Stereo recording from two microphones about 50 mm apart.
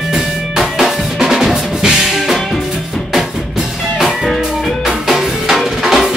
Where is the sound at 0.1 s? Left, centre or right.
Centre.